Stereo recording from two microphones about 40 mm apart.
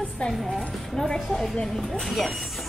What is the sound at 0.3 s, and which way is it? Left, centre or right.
Speech, centre.